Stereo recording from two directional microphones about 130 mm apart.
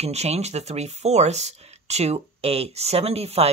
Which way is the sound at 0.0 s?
55° right (ahead or behind).